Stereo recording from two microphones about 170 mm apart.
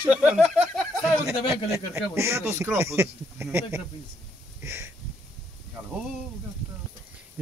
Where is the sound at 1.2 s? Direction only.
15° right (ahead or behind).